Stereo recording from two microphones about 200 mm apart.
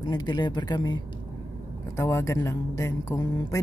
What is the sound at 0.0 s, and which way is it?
Speech, 20° left (ahead or behind).